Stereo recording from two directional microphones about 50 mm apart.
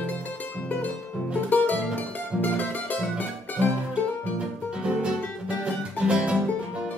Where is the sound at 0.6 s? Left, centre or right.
Left.